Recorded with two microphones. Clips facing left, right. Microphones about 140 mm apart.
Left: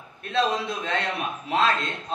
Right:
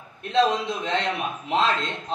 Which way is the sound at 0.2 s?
20° right (ahead or behind).